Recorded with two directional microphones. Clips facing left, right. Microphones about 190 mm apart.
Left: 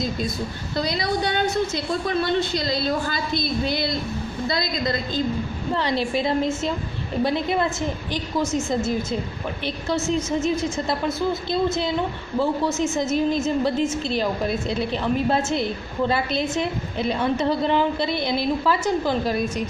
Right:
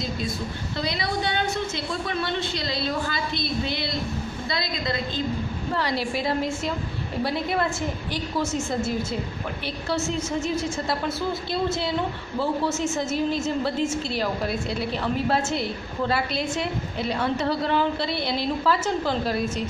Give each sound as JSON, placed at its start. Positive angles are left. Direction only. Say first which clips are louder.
{"t": 0.7, "sound": "a woman's voice", "louder": "left 4 dB", "side_deg": 40}
{"t": 5.8, "sound": "a woman's voice", "louder": "left 4 dB", "side_deg": 20}
{"t": 8.1, "sound": "a woman's voice", "louder": "left 3 dB", "side_deg": 15}
{"t": 12.4, "sound": "a woman's voice", "louder": "left 3 dB", "side_deg": 15}